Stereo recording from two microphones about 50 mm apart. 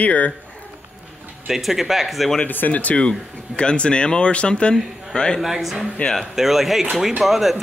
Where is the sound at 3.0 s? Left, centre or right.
Centre.